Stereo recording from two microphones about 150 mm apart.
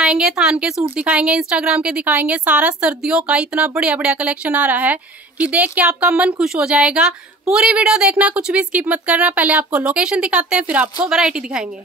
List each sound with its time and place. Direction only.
0.0 s a woman's voice: 5° right (ahead or behind)